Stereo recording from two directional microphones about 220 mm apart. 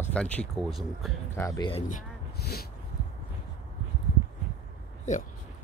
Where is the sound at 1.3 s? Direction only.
15° left (ahead or behind).